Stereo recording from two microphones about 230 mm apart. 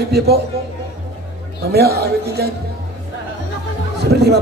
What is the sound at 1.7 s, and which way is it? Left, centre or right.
Speech, right.